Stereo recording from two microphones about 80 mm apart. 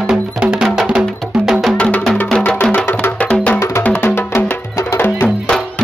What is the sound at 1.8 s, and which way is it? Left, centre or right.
Music, centre.